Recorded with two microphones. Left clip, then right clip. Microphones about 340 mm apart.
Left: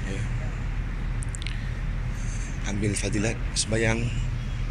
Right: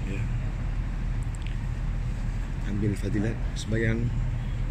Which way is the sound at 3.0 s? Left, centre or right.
Left.